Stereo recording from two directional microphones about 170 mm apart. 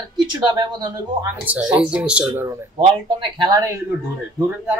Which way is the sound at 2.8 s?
30° right (ahead or behind).